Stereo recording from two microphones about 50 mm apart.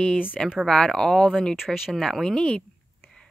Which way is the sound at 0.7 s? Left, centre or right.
Centre.